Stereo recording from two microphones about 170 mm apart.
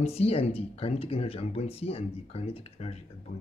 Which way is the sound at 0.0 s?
35° left (ahead or behind).